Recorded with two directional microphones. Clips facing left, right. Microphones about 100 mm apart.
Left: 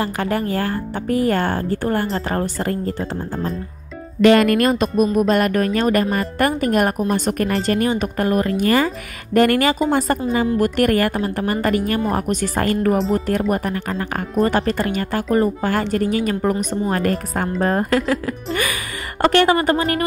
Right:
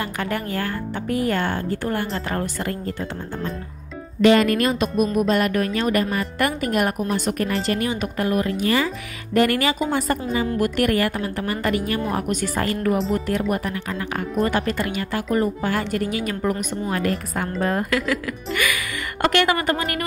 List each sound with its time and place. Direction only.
0.0 s speech: 35° left (ahead or behind)
4.2 s a woman's voice: 55° left (ahead or behind); by 20.0 s 35° left (ahead or behind)